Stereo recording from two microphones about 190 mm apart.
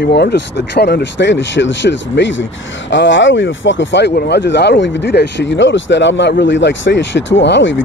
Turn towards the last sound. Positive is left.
turn(degrees=70)  # may be behind; listen again after turning